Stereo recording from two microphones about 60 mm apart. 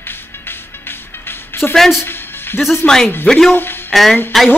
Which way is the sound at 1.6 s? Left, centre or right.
Centre.